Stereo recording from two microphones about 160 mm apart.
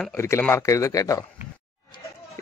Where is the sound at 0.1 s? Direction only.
15° left (ahead or behind).